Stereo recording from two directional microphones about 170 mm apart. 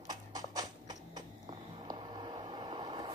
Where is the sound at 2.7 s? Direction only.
30° right (ahead or behind).